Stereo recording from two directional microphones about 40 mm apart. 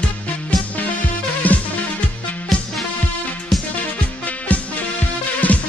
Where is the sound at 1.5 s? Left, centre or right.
Left.